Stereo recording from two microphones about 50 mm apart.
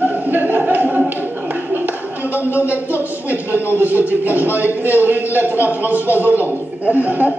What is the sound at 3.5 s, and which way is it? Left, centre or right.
Speech, left.